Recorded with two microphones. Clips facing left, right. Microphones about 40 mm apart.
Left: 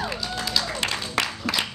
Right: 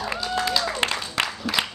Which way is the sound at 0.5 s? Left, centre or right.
Right.